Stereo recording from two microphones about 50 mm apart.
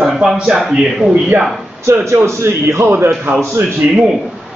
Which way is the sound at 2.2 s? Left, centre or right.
Right.